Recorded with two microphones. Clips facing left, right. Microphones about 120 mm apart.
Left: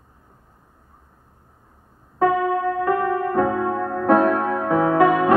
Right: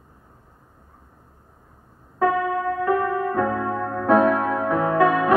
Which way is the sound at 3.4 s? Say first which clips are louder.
Left 3 dB; 15° left (ahead or behind).